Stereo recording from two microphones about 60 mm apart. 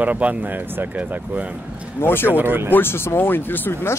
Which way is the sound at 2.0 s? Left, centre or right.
Left.